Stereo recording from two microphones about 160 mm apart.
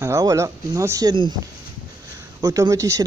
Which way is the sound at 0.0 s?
20° right (ahead or behind).